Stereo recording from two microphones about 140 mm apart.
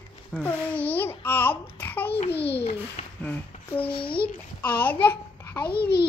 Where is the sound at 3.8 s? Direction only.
40° left (ahead or behind).